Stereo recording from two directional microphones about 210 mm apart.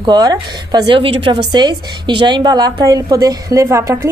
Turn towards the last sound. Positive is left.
turn(degrees=-15)  # may be behind; listen again after turning